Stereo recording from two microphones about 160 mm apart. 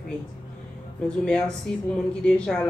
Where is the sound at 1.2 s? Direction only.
5° left (ahead or behind).